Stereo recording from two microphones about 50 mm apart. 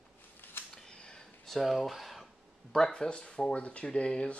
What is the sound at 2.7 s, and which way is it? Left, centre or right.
Speech, centre.